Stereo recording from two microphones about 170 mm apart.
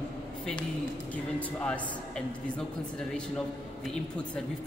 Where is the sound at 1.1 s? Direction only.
5° left (ahead or behind).